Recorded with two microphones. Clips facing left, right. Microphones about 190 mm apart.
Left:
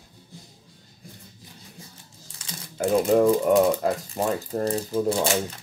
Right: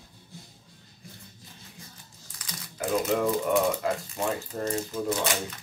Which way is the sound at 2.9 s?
30° left (ahead or behind).